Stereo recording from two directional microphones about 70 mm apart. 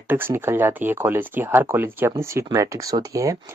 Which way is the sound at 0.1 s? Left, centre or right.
Right.